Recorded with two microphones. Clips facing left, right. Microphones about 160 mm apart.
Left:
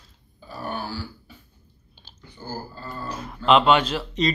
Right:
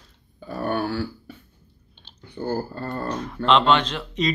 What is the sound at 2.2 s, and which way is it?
Speech, 60° right (ahead or behind).